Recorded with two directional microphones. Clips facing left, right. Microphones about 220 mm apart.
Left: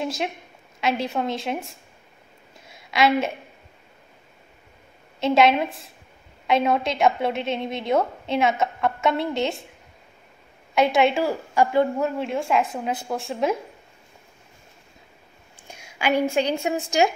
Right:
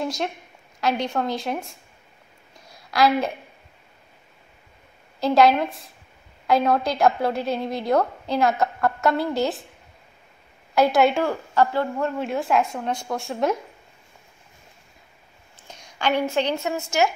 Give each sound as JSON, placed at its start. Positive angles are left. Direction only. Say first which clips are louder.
{"t": 0.0, "sound": "a woman's voice", "louder": "even", "side_deg": 0}
{"t": 2.6, "sound": "a sound", "louder": "right 1 dB", "side_deg": 0}
{"t": 5.2, "sound": "a woman's voice", "louder": "right 1 dB", "side_deg": 0}
{"t": 10.7, "sound": "a woman's voice", "louder": "right 1 dB", "side_deg": 0}
{"t": 11.5, "sound": "speech", "louder": "left 2 dB", "side_deg": 15}
{"t": 12.0, "sound": "a woman's voice", "louder": "even", "side_deg": 0}
{"t": 15.5, "sound": "a sound", "louder": "even", "side_deg": 10}
{"t": 17.0, "sound": "speech", "louder": "left 1 dB", "side_deg": 15}